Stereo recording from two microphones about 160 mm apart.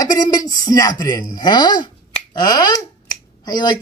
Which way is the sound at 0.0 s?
25° left (ahead or behind).